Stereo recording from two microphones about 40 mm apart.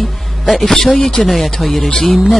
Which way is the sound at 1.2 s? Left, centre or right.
Centre.